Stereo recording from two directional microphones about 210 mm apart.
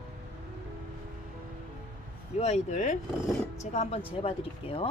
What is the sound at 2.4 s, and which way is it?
Speech, 35° left (ahead or behind).